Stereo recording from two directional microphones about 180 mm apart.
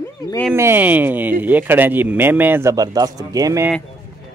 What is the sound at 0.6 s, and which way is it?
A man's voice, 10° right (ahead or behind).